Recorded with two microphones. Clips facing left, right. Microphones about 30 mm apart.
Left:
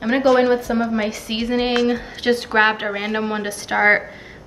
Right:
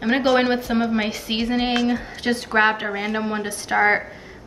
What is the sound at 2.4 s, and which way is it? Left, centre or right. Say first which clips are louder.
A woman's voice: right 1 dB; centre.